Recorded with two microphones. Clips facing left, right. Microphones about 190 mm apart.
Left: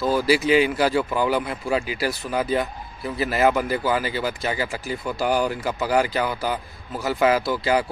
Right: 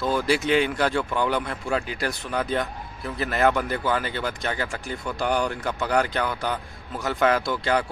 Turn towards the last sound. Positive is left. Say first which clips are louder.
# left 2 dB
turn(degrees=5)  # may be behind; listen again after turning